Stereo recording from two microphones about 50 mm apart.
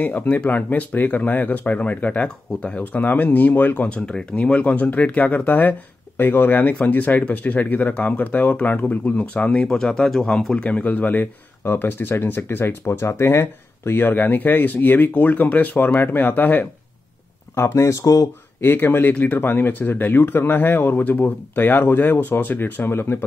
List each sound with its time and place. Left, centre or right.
0.0 s speech: left; by 2.8 s centre
2.8 s speech: left
3.8 s speech: left
9.5 s speech: centre
10.5 s speech: left
10.8 s speech: left
11.6 s speech: left
17.6 s speech: left
18.6 s speech: left